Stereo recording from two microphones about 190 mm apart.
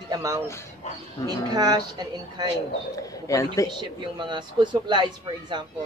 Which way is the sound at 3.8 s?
25° right (ahead or behind).